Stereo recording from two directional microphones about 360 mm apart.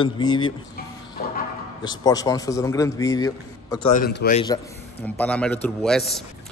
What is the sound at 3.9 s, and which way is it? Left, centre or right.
Speech, left.